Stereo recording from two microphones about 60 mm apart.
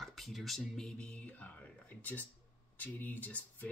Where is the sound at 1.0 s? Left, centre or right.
Left.